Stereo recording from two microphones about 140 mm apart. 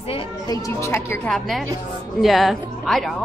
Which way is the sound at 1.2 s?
Centre (ahead or behind).